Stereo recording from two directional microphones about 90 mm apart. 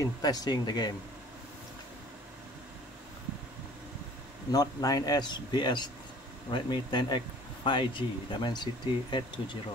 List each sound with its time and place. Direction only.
0.0 s a man's voice: 45° left (ahead or behind)
4.5 s a man's voice: 45° left (ahead or behind); by 9.6 s 60° left (ahead or behind)